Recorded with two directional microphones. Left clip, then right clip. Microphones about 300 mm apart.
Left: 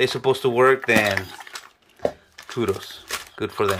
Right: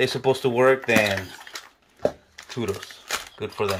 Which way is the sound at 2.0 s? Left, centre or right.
Centre.